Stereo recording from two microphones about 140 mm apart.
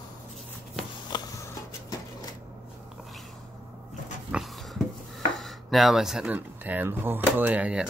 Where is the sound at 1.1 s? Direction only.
25° left (ahead or behind).